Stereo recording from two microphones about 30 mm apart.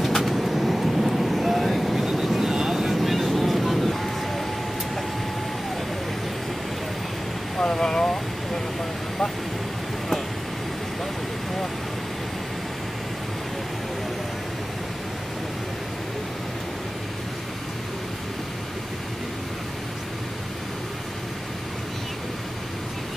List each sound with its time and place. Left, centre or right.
0.0 s vehicle: centre
7.5 s vehicle: left